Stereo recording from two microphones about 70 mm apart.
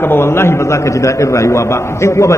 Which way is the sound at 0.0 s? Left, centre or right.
Left.